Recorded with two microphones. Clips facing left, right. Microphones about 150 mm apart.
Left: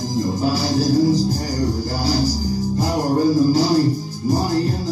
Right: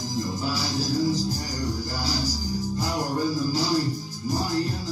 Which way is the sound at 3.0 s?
45° left (ahead or behind).